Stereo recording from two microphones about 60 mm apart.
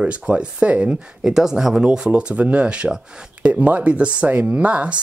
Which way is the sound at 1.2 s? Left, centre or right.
Centre.